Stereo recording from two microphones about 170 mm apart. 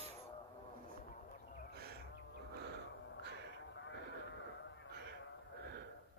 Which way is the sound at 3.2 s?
80° right.